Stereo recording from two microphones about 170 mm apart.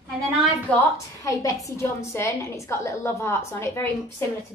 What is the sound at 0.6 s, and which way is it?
A woman's voice, 20° left (ahead or behind).